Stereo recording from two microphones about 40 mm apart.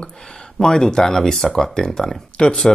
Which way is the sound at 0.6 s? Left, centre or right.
Centre.